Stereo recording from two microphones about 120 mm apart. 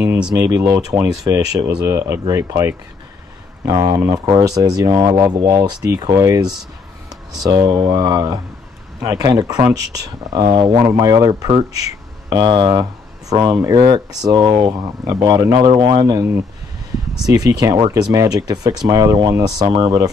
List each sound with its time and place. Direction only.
0.0 s speech: 10° right (ahead or behind)
0.4 s speech: 25° right (ahead or behind)
10.8 s speech: 25° right (ahead or behind)
13.5 s speech: 25° right (ahead or behind)
17.3 s speech: 30° right (ahead or behind)